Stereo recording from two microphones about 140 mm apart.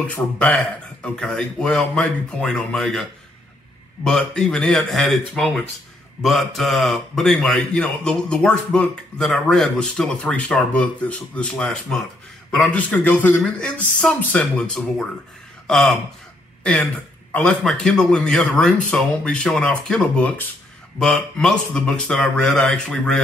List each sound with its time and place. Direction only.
0.0 s a man's voice: 10° left (ahead or behind)